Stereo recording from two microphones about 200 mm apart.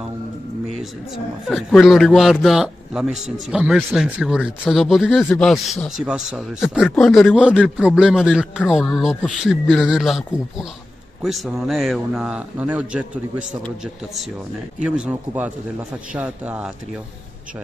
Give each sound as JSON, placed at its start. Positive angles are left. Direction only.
{"t": 1.1, "sound": "speech", "side_deg": 0}
{"t": 14.8, "sound": "speech", "side_deg": -5}